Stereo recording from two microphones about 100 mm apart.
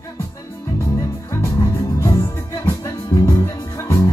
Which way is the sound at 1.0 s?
30° left (ahead or behind).